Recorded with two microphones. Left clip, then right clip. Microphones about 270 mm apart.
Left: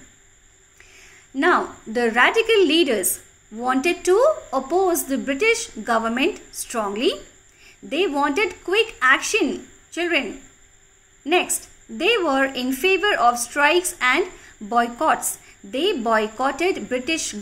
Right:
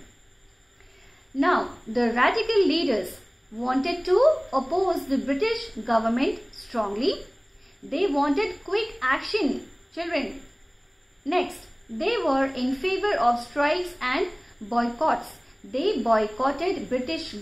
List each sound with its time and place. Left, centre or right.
1.3 s a sound: left
2.0 s a woman's voice: left
11.3 s a woman's voice: left